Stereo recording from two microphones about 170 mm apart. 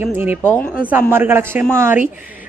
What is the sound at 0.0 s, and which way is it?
A woman's voice, 15° right (ahead or behind).